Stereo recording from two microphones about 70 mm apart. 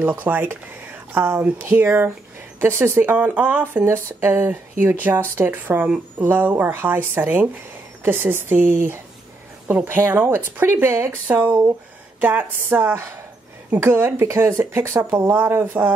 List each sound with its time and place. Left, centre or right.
0.0 s speech: right